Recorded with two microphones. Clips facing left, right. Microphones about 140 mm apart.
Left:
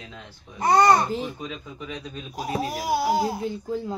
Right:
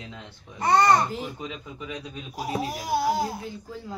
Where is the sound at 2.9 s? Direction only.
5° left (ahead or behind).